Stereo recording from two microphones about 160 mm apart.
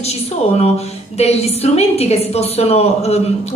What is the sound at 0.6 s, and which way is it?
A woman's voice, 40° left (ahead or behind).